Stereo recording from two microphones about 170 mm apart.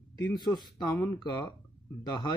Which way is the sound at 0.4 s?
25° left (ahead or behind).